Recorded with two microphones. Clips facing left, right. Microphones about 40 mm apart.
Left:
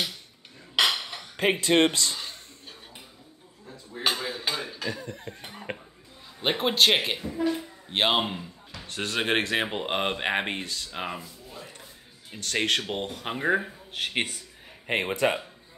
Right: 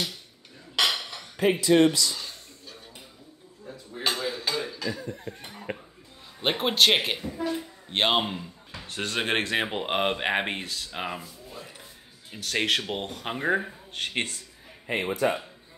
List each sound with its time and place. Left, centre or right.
1.3 s speech: left
4.0 s a sound: centre
4.7 s cough: left
5.0 s speech: left
5.4 s speech: centre
6.4 s speech: centre
14.9 s speech: left